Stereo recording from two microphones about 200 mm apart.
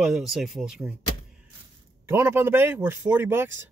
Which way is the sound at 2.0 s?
10° right (ahead or behind).